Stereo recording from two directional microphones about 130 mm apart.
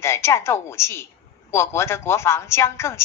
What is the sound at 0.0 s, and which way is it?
A woman's voice, 20° left (ahead or behind).